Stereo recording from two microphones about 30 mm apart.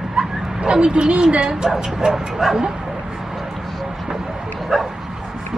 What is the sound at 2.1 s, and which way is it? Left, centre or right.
Bow-wow, centre.